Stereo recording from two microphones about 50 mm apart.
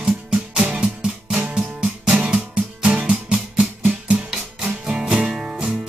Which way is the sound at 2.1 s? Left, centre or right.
Right.